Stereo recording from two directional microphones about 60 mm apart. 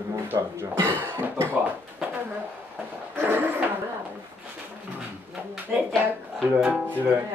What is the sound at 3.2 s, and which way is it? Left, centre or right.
Speech, right.